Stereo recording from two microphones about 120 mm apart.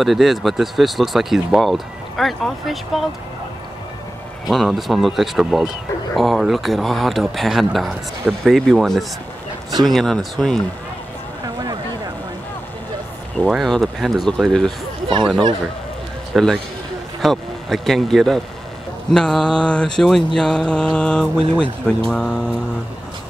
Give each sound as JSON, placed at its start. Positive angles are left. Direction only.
{"t": 0.0, "sound": "speech", "side_deg": 0}
{"t": 4.5, "sound": "speech", "side_deg": 0}
{"t": 11.4, "sound": "a sound", "side_deg": -30}
{"t": 13.4, "sound": "speech", "side_deg": -10}
{"t": 13.7, "sound": "speech", "side_deg": 0}
{"t": 16.3, "sound": "speech", "side_deg": 0}
{"t": 20.3, "sound": "mantra", "side_deg": 5}